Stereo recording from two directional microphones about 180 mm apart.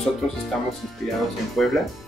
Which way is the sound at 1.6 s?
5° left (ahead or behind).